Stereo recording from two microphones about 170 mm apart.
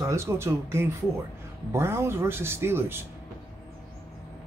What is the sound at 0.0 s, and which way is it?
Speech, 15° right (ahead or behind).